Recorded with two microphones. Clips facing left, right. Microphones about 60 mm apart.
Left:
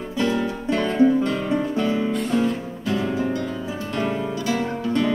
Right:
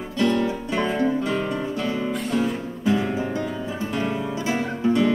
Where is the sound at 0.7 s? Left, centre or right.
Centre.